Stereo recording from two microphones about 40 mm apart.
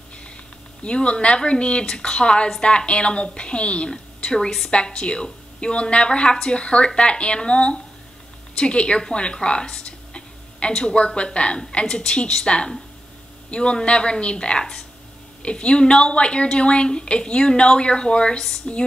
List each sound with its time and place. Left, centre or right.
0.8 s a woman's voice: left